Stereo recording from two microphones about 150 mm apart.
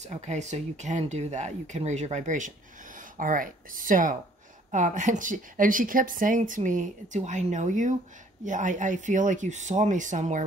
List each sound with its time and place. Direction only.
0.0 s a woman's voice: 50° right (ahead or behind)